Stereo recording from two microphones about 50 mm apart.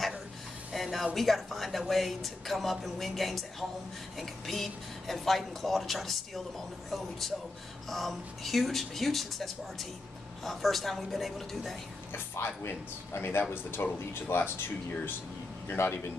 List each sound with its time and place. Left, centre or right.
0.7 s music: centre
1.1 s speech: centre
12.1 s speech: left
13.4 s speech: left